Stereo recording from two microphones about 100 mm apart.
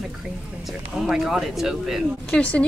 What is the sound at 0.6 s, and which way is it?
Speech, 5° right (ahead or behind).